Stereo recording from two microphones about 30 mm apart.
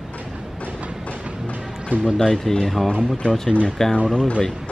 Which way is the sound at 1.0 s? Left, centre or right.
Left.